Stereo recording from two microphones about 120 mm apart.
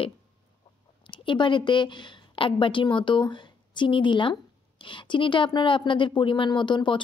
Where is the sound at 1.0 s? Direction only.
45° left (ahead or behind).